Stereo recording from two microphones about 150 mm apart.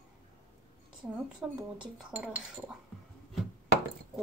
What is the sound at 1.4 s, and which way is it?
Speech, 10° right (ahead or behind).